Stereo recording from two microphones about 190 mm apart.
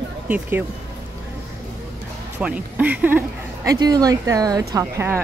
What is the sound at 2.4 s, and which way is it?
A woman's voice, 5° right (ahead or behind).